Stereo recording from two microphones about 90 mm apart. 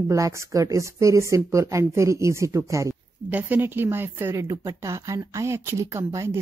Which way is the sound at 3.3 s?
20° right (ahead or behind).